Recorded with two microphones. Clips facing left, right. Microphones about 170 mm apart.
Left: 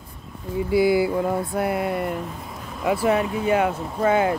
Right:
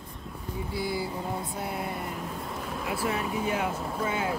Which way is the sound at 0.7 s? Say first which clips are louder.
Left 14 dB; 90° left.